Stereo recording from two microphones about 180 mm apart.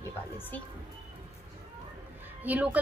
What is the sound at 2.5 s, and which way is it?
Speech, 10° right (ahead or behind).